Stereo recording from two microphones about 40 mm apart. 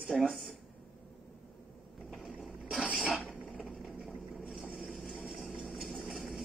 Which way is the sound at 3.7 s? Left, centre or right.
Centre.